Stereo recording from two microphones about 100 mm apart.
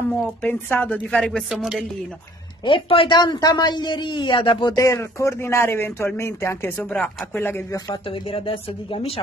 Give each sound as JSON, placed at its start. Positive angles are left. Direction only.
{"t": 0.4, "sound": "speech", "side_deg": 20}
{"t": 1.5, "sound": "speech", "side_deg": -5}
{"t": 2.6, "sound": "speech", "side_deg": 60}
{"t": 3.2, "sound": "speech", "side_deg": 40}
{"t": 4.7, "sound": "speech", "side_deg": 30}
{"t": 8.1, "sound": "speech", "side_deg": 65}